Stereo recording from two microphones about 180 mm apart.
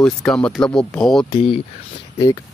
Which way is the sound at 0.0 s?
5° left (ahead or behind).